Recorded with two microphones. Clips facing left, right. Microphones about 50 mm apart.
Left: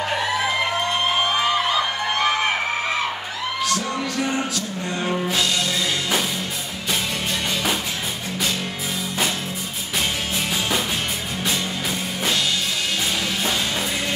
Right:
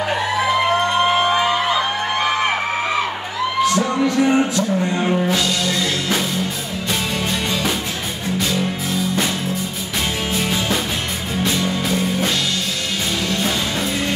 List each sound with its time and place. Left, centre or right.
3.6 s music: right
5.1 s music: centre
10.3 s music: centre